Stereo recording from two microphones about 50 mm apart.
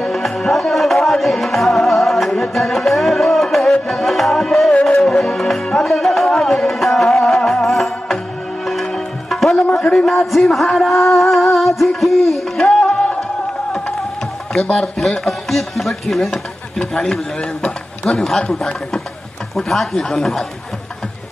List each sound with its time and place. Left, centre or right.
0.0 s music: centre
9.9 s speech: centre
10.9 s music: centre
14.5 s a man's voice: centre
19.5 s speech: centre